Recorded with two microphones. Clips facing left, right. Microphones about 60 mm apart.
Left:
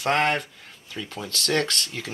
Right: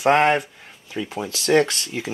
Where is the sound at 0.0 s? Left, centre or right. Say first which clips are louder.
Right 6 dB; centre.